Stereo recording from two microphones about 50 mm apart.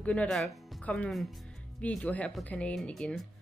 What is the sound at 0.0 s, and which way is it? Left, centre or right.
Speech, left.